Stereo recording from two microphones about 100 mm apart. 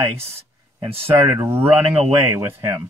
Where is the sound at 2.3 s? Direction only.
25° right (ahead or behind).